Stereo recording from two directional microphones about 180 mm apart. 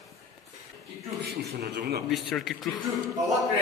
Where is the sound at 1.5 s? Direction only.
65° right (ahead or behind).